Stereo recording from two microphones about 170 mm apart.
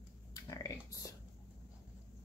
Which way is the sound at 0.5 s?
20° left (ahead or behind).